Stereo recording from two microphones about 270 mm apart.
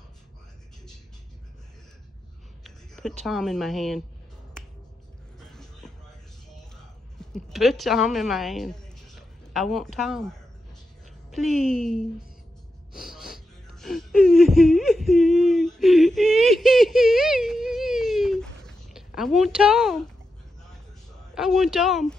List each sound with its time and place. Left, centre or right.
2.6 s speech: centre
7.2 s a woman's voice: centre
12.9 s wheeze: centre
21.4 s speech: centre